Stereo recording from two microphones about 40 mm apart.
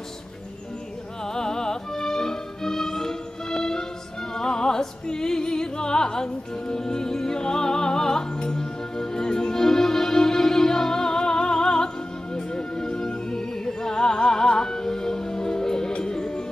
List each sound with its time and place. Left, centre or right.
1.2 s music: centre